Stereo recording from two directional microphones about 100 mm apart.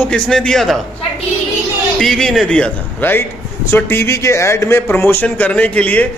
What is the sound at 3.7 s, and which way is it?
A man's voice, 25° left (ahead or behind).